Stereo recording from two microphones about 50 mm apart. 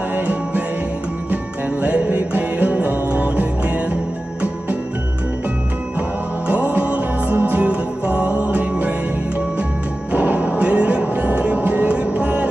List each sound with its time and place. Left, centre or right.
0.1 s music: right
6.4 s music: right
10.1 s music: right
12.2 s a sound: right